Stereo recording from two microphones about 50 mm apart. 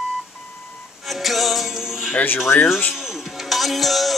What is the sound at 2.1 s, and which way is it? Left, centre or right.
Speech, left.